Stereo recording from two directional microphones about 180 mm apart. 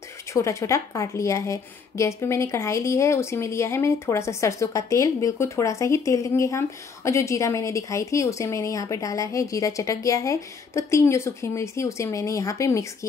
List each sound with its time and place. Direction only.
0.3 s a woman's voice: 15° left (ahead or behind)